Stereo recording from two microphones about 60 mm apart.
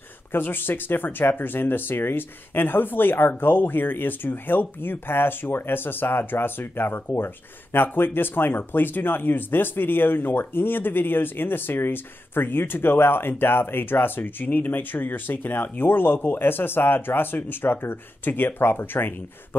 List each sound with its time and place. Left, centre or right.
0.3 s speech: left